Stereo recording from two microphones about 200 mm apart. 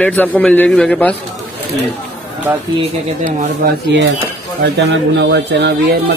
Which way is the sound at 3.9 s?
65° right (ahead or behind).